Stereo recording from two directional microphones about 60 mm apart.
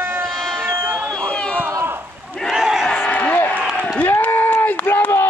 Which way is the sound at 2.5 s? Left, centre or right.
Centre.